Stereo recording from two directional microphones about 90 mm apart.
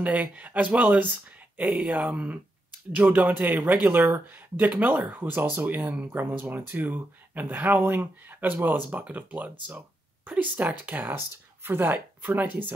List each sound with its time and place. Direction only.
0.0 s speech: 15° right (ahead or behind)